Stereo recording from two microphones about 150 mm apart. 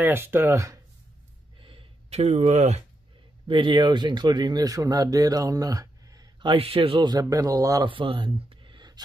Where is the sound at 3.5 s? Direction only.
35° right (ahead or behind).